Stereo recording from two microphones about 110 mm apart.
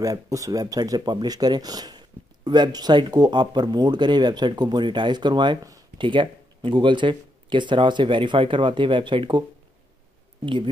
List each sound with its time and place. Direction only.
0.0 s speech: 30° right (ahead or behind); by 9.4 s 45° right (ahead or behind)
10.4 s speech: 50° right (ahead or behind)